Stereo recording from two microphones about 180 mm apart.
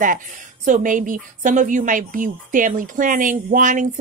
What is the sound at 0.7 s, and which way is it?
Speech, 45° right (ahead or behind).